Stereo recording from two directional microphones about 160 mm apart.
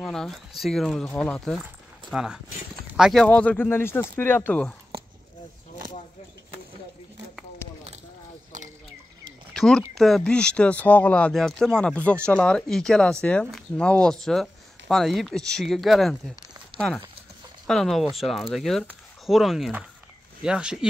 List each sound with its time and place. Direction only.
0.0 s speech: 5° left (ahead or behind)
2.0 s speech: 5° right (ahead or behind)
9.5 s speech: 5° left (ahead or behind)
16.7 s a sound: 30° right (ahead or behind)
17.6 s speech: centre (ahead or behind)